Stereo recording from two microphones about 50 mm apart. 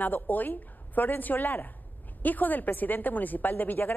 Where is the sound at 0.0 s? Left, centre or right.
Left.